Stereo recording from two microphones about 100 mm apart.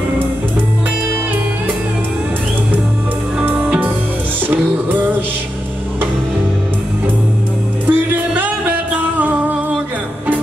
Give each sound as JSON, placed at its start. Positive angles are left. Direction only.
{"t": 3.5, "sound": "music", "side_deg": -10}
{"t": 7.8, "sound": "music", "side_deg": -20}